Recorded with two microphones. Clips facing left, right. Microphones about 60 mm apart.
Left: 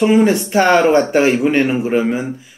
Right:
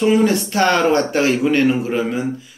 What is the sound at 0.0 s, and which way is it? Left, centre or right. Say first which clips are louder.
Speech: left 3 dB; left.